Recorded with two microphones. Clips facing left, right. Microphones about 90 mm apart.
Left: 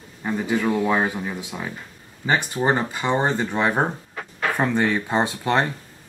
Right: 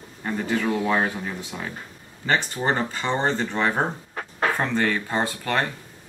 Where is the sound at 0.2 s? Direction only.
10° left (ahead or behind).